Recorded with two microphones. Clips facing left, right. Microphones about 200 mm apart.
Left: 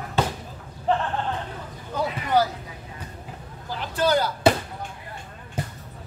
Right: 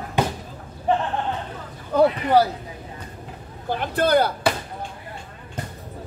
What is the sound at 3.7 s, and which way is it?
Speech, 60° right (ahead or behind).